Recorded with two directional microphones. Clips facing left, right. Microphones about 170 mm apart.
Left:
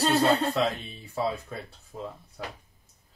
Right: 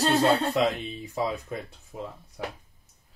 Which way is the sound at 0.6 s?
15° right (ahead or behind).